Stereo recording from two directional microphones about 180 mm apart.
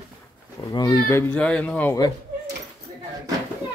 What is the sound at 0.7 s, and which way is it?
Speech, 20° left (ahead or behind).